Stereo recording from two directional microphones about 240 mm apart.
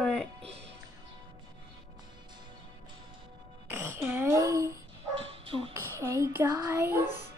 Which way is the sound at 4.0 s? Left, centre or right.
Centre.